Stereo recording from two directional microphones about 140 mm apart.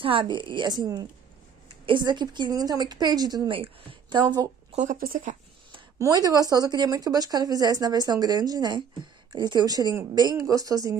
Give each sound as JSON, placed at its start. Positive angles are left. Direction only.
{"t": 0.0, "sound": "a woman's voice", "side_deg": -35}
{"t": 4.7, "sound": "speech", "side_deg": -75}
{"t": 5.9, "sound": "a woman's voice", "side_deg": -25}